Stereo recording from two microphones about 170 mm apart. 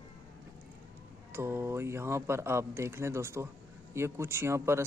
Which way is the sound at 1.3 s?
15° right (ahead or behind).